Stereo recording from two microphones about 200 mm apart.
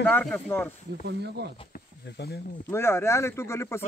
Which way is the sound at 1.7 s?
50° left (ahead or behind).